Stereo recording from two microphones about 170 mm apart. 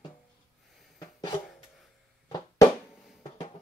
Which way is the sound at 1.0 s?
25° left (ahead or behind).